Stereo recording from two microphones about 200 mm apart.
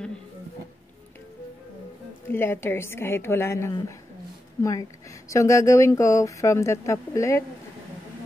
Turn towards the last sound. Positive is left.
turn(degrees=15)  # may be behind; listen again after turning